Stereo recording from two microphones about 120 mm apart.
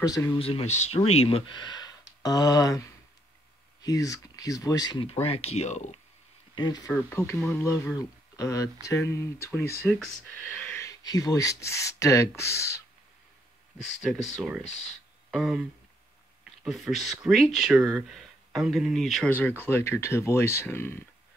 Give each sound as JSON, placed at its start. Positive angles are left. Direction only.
{"t": 0.0, "sound": "speech", "side_deg": 30}
{"t": 0.4, "sound": "speech", "side_deg": 55}
{"t": 5.2, "sound": "speech", "side_deg": 55}
{"t": 6.5, "sound": "speech", "side_deg": 40}
{"t": 6.9, "sound": "speech", "side_deg": 10}
{"t": 7.2, "sound": "speech", "side_deg": 25}
{"t": 9.9, "sound": "speech", "side_deg": 5}
{"t": 10.8, "sound": "speech", "side_deg": 30}
{"t": 13.8, "sound": "speech", "side_deg": 0}
{"t": 16.6, "sound": "speech", "side_deg": 0}
{"t": 19.2, "sound": "speech", "side_deg": 15}